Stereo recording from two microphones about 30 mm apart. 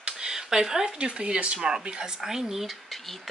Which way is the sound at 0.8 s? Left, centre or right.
Right.